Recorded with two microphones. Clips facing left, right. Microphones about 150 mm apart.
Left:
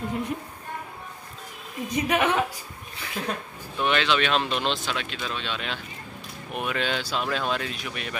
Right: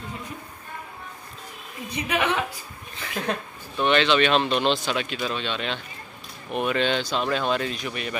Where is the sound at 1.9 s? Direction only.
45° left (ahead or behind).